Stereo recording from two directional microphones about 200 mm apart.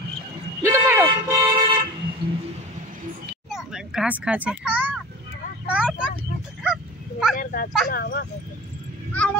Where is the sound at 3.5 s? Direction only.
Centre (ahead or behind).